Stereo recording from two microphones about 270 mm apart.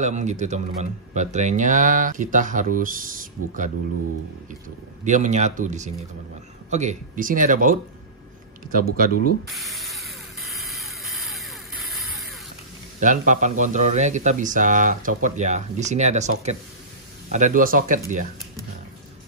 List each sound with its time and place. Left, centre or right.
0.0 s speech: right
5.0 s speech: right
8.7 s speech: right
9.5 s music: centre
13.0 s speech: right